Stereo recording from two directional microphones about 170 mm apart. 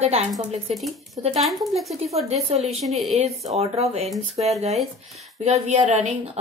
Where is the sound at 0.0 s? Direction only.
40° right (ahead or behind).